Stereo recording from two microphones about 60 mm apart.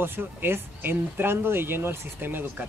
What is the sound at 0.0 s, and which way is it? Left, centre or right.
Speech, right.